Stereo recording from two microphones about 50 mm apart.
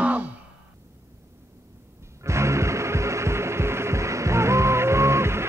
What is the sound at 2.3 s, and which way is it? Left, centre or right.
Music, right.